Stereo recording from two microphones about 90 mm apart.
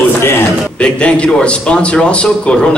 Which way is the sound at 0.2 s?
25° left (ahead or behind).